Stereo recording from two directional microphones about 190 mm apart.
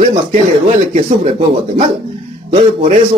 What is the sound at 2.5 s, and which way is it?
Speech, 35° right (ahead or behind).